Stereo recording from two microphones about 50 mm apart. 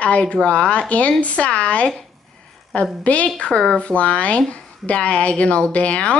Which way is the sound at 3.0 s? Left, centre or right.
Left.